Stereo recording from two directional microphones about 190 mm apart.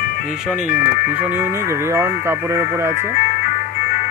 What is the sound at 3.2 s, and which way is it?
Music, 40° left (ahead or behind).